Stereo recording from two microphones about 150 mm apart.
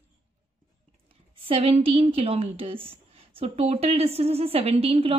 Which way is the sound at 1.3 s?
40° right (ahead or behind).